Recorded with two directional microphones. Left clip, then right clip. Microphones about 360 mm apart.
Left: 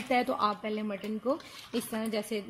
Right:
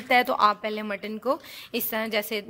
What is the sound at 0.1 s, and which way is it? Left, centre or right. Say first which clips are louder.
A woman's voice: right 8 dB; right.